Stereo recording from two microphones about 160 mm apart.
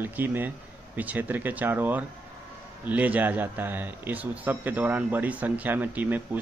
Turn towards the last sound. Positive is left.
turn(degrees=-10)  # may be behind; listen again after turning